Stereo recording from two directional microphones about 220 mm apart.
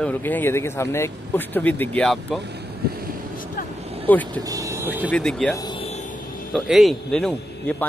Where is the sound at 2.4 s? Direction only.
50° right (ahead or behind).